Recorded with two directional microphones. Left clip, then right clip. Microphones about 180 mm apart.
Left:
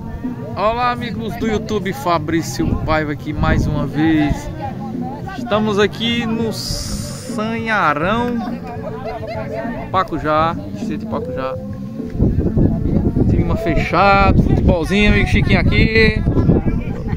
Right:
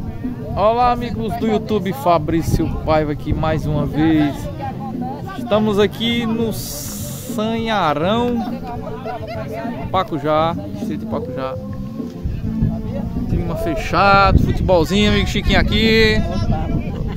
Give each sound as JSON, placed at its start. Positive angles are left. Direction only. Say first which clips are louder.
{"t": 0.6, "sound": "a man's voice", "louder": "right 2 dB", "side_deg": -25}
{"t": 5.5, "sound": "speech", "louder": "even", "side_deg": -15}
{"t": 7.3, "sound": "speech", "louder": "left 1 dB", "side_deg": -20}
{"t": 9.9, "sound": "speech", "louder": "left 1 dB", "side_deg": -10}
{"t": 13.3, "sound": "speech", "louder": "left 3 dB", "side_deg": 15}